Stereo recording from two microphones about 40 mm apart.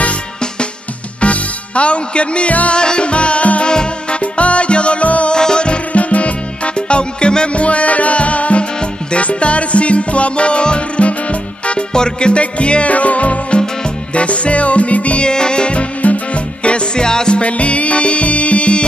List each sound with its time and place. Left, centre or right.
1.2 s music: left
5.3 s music: left
11.9 s music: left
15.2 s music: left
17.4 s music: left